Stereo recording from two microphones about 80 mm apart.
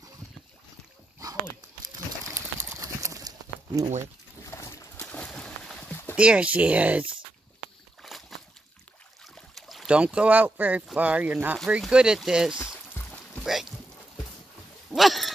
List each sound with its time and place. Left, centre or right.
2.2 s clip-clop: right
4.5 s boat: left
5.3 s a sound: centre
5.8 s a sound: left
6.1 s speech: centre
8.0 s a sound: centre
9.2 s boat: centre
9.8 s speech: centre
11.9 s speech: centre
13.0 s music: left
13.4 s a sound: centre
15.0 s dog: centre